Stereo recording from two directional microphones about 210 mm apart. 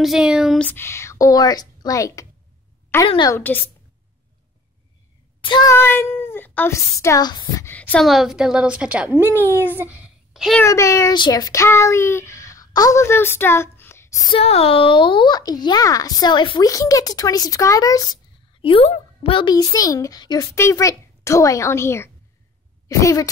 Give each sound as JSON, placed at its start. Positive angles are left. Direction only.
{"t": 0.0, "sound": "a woman's voice", "side_deg": -5}
{"t": 3.3, "sound": "speech", "side_deg": 10}
{"t": 5.4, "sound": "a woman's voice", "side_deg": 20}
{"t": 10.6, "sound": "a child's voice", "side_deg": 15}
{"t": 14.3, "sound": "speech", "side_deg": 30}